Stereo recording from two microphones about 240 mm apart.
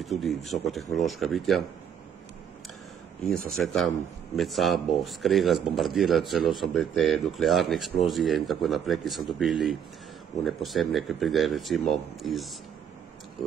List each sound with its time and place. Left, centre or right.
0.0 s speech: centre
3.3 s speech: centre